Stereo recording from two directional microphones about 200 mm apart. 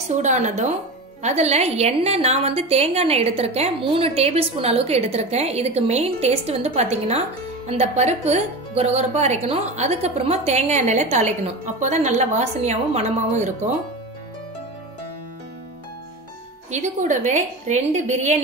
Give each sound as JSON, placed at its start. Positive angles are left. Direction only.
{"t": 0.1, "sound": "a woman's voice", "side_deg": -35}
{"t": 16.7, "sound": "a woman's voice", "side_deg": -35}